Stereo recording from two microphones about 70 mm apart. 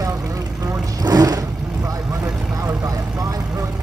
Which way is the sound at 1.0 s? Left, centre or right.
Right.